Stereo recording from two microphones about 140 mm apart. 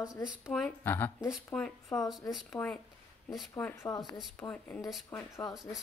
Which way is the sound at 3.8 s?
25° left (ahead or behind).